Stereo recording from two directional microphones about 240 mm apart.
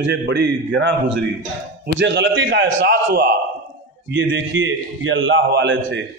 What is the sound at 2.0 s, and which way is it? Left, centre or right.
A man's voice, right.